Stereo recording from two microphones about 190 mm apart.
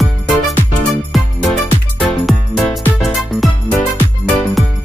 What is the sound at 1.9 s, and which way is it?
Music, centre (ahead or behind).